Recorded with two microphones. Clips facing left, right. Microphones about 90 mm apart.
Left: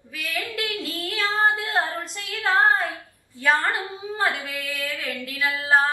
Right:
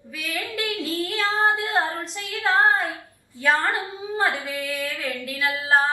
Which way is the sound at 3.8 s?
20° right (ahead or behind).